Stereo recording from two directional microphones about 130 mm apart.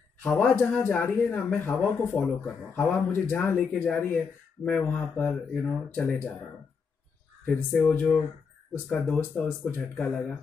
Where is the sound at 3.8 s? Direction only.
Centre (ahead or behind).